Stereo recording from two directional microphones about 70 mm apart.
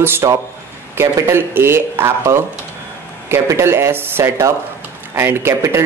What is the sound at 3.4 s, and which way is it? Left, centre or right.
Speech, right.